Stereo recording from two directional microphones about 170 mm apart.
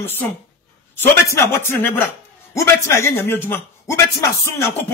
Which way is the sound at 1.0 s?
15° left (ahead or behind).